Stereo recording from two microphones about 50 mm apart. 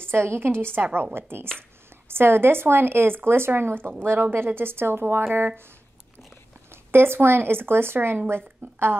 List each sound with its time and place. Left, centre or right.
0.0 s speech: right
6.7 s speech: right